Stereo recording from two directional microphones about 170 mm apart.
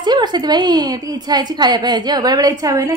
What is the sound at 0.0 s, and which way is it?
A woman's voice, 25° right (ahead or behind).